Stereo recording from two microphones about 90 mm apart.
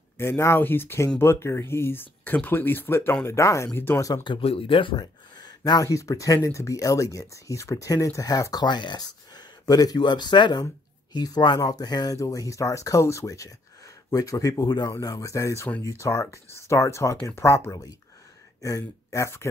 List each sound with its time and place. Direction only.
0.2 s speech: 30° left (ahead or behind)
4.2 s speech: 75° left (ahead or behind)
4.9 s speech: 50° left (ahead or behind)
8.6 s speech: 55° left (ahead or behind)
12.2 s speech: 40° left (ahead or behind)